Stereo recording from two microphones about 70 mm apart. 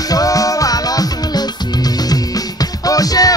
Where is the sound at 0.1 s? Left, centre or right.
Left.